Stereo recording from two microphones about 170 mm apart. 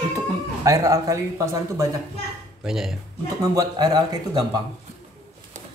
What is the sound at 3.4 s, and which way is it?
Speech, 20° right (ahead or behind).